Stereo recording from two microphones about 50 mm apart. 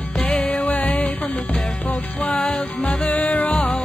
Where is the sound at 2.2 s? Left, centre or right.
Centre.